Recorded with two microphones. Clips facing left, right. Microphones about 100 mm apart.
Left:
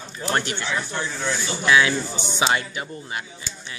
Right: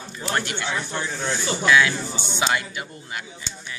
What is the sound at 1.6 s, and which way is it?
Speech, 15° left (ahead or behind).